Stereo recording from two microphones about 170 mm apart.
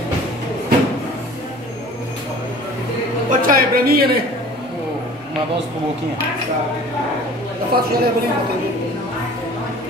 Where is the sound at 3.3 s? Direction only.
55° right (ahead or behind).